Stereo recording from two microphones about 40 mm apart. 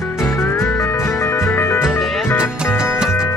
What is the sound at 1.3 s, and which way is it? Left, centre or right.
Music, left.